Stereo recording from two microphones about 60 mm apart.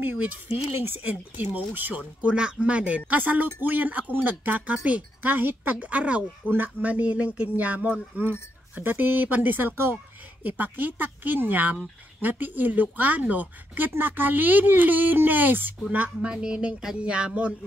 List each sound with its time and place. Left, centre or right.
0.7 s speech: right
16.2 s music: centre